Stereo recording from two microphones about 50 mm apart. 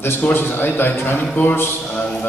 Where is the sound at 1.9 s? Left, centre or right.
Left.